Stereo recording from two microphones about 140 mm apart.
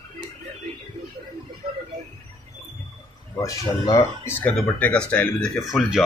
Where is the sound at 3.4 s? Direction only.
25° left (ahead or behind).